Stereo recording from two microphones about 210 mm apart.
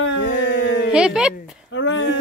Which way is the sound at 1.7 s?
65° left (ahead or behind).